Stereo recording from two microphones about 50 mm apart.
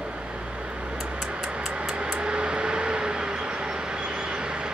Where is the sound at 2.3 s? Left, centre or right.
Right.